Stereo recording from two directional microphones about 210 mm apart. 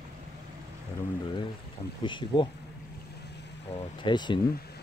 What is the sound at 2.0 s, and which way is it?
Speech, 20° left (ahead or behind).